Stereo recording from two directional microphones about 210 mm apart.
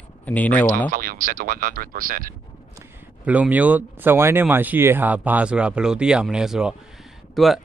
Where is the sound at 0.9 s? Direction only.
40° right (ahead or behind).